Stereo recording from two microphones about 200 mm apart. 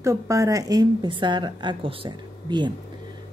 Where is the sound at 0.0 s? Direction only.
15° right (ahead or behind).